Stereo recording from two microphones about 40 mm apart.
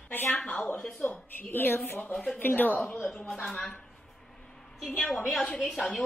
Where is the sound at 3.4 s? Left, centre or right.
Centre.